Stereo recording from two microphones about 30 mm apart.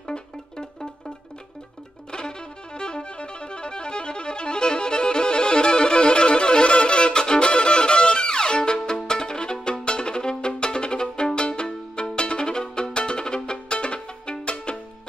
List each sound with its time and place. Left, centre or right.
0.0 s music: left
2.1 s music: left
8.7 s violin: left
11.6 s music: left